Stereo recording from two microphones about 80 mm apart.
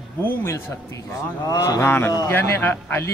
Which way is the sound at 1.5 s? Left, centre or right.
Left.